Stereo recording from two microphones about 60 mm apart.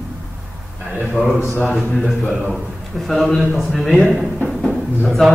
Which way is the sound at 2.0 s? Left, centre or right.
Centre.